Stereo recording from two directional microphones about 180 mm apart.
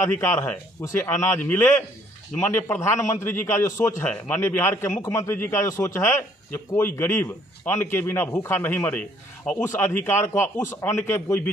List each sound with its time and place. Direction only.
0.0 s a man's voice: 15° left (ahead or behind)